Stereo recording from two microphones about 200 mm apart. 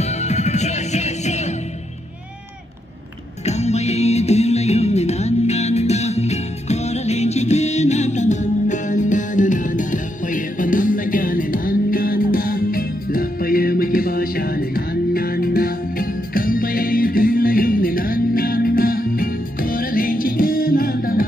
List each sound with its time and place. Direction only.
0.0 s music: 35° left (ahead or behind)
3.4 s music: 35° left (ahead or behind)